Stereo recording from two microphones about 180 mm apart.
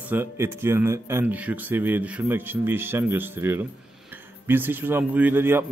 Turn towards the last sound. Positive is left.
turn(degrees=-10)  # may be behind; listen again after turning